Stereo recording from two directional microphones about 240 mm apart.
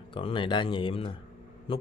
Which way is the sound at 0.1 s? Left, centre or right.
Left.